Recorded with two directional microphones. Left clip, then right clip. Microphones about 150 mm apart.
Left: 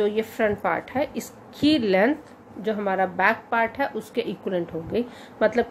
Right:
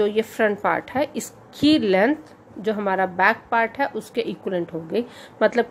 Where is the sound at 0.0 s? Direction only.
30° right (ahead or behind).